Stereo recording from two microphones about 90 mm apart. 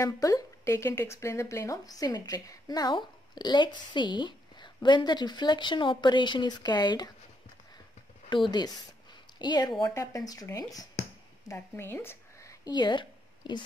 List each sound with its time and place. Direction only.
0.0 s speech: 40° left (ahead or behind)
8.3 s speech: 60° left (ahead or behind); by 10.9 s 45° left (ahead or behind)
11.5 s a woman's voice: 25° left (ahead or behind)
12.7 s speech: 55° left (ahead or behind)